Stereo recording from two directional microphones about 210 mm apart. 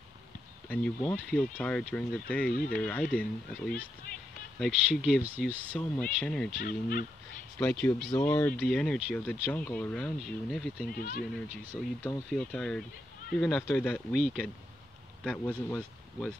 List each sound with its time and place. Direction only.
0.7 s speech: 5° left (ahead or behind)
2.5 s speech: 45° left (ahead or behind)
2.8 s speech: 5° left (ahead or behind)
5.8 s speech: 5° left (ahead or behind)
6.5 s speech: 45° left (ahead or behind)
7.5 s speech: 10° left (ahead or behind)
11.0 s speech: 40° left (ahead or behind)
11.8 s speech: 5° left (ahead or behind)